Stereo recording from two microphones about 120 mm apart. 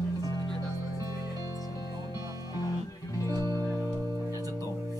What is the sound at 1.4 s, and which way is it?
Music, 30° left (ahead or behind).